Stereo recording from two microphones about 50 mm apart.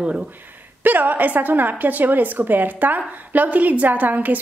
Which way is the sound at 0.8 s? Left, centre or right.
Right.